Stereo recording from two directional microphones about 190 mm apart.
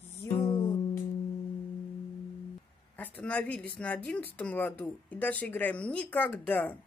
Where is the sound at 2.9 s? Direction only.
10° left (ahead or behind).